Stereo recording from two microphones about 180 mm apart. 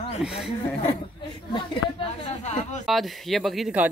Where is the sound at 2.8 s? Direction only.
Centre (ahead or behind).